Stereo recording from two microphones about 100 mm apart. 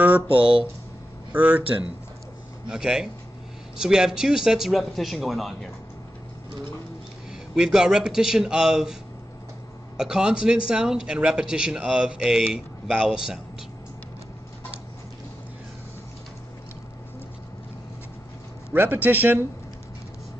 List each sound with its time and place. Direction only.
0.3 s speech: 60° right (ahead or behind)
1.3 s speech: 15° right (ahead or behind)
2.7 s a man's voice: 5° right (ahead or behind)
7.5 s speech: 10° right (ahead or behind)
9.9 s speech: 5° right (ahead or behind)
18.7 s a man's voice: 20° right (ahead or behind)